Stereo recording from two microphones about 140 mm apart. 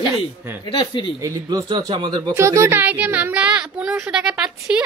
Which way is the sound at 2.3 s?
20° right (ahead or behind).